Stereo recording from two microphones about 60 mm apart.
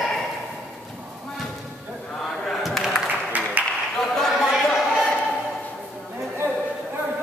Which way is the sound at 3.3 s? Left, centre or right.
Right.